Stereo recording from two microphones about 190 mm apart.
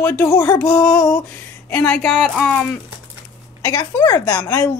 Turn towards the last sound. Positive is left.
turn(degrees=15)  # may be behind; listen again after turning